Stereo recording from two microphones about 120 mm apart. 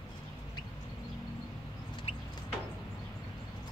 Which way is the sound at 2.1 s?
55° left (ahead or behind).